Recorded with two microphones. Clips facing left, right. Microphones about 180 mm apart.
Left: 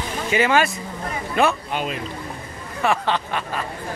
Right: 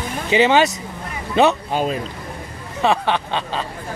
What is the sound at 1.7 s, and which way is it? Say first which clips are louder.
Speech: right 5 dB; 35° right (ahead or behind).